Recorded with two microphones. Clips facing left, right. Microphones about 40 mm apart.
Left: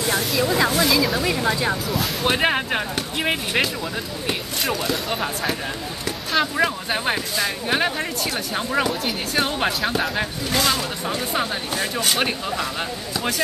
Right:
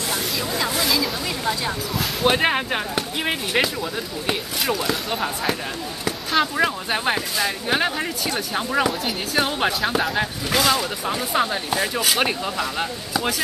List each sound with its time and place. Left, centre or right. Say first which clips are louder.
0.1 s speech: left 6 dB; centre
0.7 s speech: left 3 dB; centre
1.2 s speech: left 3 dB; centre
2.0 s speech: right 4 dB; centre